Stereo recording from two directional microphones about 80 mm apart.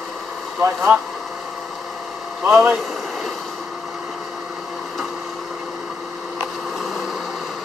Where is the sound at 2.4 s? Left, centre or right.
Right.